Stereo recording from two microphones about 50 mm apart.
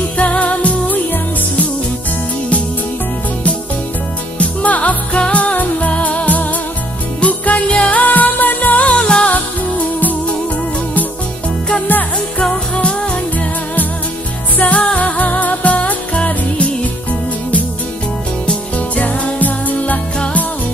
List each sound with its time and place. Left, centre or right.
0.2 s music: left
4.4 s music: left
7.6 s music: centre
8.0 s music: left
8.9 s music: centre
9.3 s music: left
11.9 s music: left
12.4 s music: centre
14.6 s music: left
18.8 s music: left